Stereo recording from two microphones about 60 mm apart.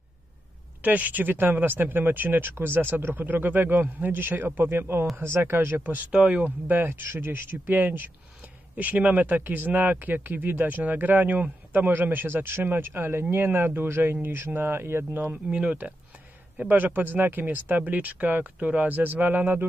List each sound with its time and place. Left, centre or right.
0.8 s speech: right
6.1 s speech: centre
6.4 s speech: right
15.5 s speech: right